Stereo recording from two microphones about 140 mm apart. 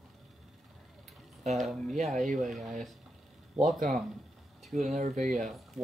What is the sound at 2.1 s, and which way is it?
Speech, 60° right (ahead or behind).